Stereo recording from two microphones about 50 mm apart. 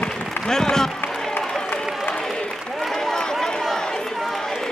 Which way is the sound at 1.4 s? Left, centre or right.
Centre.